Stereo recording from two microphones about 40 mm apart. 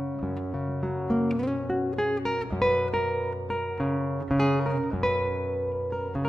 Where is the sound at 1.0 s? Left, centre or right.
Centre.